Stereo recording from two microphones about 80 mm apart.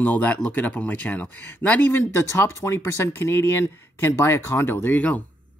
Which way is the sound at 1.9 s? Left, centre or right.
Left.